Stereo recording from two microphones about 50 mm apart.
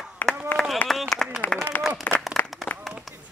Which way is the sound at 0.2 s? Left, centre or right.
Left.